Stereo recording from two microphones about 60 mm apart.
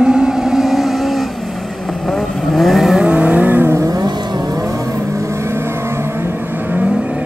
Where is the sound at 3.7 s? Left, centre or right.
Right.